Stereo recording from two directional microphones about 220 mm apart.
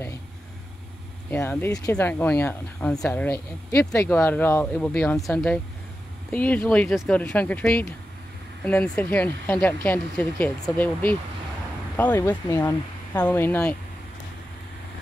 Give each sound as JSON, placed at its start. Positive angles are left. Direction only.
{"t": 1.3, "sound": "speech", "side_deg": 10}